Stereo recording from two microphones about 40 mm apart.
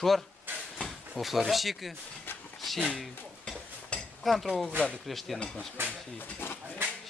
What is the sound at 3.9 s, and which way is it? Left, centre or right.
Dishes, left.